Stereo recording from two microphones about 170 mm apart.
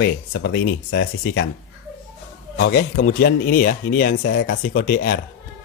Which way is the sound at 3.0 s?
60° left (ahead or behind).